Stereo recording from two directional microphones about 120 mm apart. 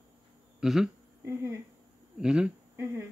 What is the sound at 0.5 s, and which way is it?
Speech, 5° right (ahead or behind).